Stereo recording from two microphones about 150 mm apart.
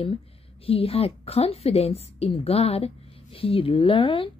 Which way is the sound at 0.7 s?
40° left (ahead or behind).